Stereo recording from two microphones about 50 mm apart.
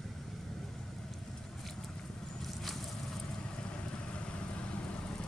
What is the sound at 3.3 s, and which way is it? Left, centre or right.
Vehicle, centre.